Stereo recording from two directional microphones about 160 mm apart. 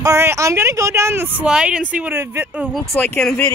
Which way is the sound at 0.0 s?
20° right (ahead or behind).